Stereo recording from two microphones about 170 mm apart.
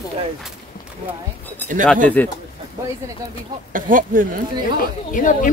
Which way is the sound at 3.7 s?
55° right (ahead or behind).